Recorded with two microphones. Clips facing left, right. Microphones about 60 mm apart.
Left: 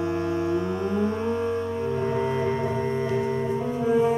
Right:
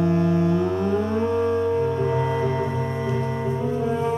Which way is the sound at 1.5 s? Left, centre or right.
Centre.